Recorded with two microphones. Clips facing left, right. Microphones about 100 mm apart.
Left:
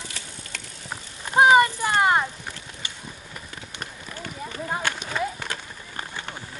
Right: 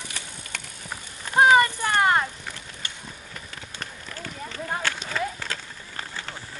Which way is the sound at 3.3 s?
15° left (ahead or behind).